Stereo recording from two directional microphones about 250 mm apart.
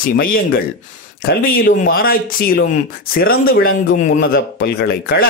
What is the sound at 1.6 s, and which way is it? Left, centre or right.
Speech, left.